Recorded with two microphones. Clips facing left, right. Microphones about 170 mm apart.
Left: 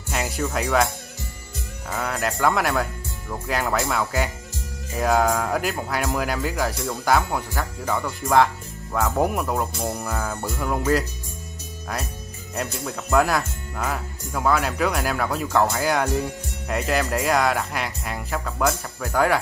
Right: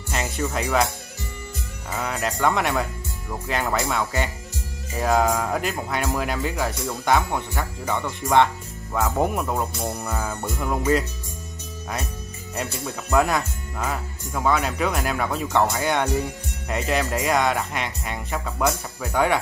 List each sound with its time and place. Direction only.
0.1 s speech: centre (ahead or behind)
12.7 s speech: centre (ahead or behind)